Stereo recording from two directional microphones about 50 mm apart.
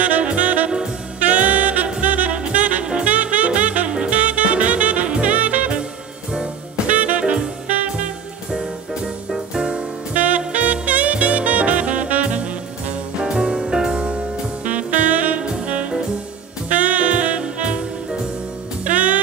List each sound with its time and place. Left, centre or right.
0.0 s saxophone: right
6.3 s music: right
8.5 s music: centre
13.2 s music: centre
18.9 s music: right